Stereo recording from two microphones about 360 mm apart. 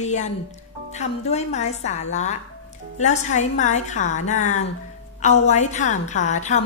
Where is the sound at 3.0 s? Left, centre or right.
Centre.